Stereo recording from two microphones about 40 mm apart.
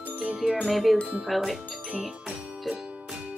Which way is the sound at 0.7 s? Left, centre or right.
Centre.